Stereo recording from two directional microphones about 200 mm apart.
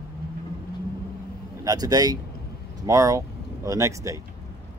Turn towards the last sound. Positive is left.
turn(degrees=-15)  # may be behind; listen again after turning